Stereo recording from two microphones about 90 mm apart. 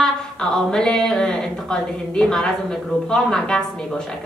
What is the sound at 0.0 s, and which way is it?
A woman's voice, 5° left (ahead or behind).